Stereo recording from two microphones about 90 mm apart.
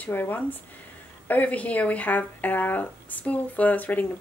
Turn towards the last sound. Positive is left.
turn(degrees=20)  # may be behind; listen again after turning